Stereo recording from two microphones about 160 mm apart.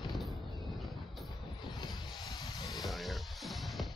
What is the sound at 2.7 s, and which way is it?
Music, centre (ahead or behind).